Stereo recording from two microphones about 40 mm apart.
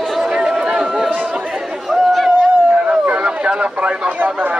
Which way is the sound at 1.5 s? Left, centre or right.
Centre.